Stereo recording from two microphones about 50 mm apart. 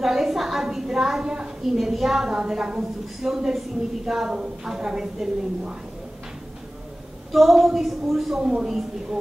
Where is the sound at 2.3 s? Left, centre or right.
Centre.